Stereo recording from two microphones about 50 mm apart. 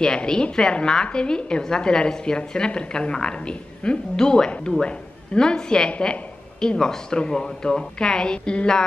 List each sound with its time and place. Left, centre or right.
0.0 s a woman's voice: centre